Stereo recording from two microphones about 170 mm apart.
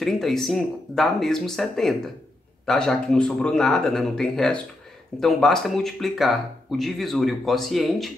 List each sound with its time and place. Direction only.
0.0 s speech: centre (ahead or behind)